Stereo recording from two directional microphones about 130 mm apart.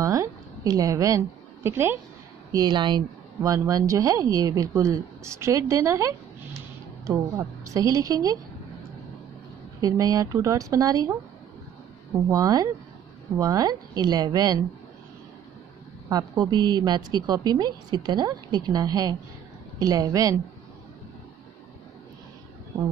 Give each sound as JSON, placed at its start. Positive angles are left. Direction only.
{"t": 0.0, "sound": "a woman's voice", "side_deg": -25}
{"t": 2.5, "sound": "a woman's voice", "side_deg": -35}
{"t": 9.8, "sound": "speech", "side_deg": -25}
{"t": 12.3, "sound": "speech", "side_deg": -25}
{"t": 16.1, "sound": "a woman's voice", "side_deg": -30}